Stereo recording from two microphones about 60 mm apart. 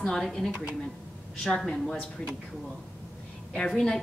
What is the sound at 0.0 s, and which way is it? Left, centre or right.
A woman's voice, centre.